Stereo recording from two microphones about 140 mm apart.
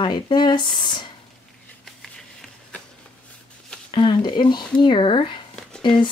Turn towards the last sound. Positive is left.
turn(degrees=35)  # may be behind; listen again after turning